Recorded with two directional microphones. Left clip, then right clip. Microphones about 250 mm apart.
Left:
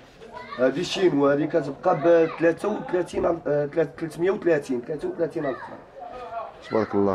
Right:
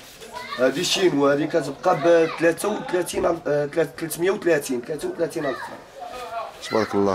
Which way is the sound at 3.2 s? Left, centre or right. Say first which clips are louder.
Right 2 dB; centre.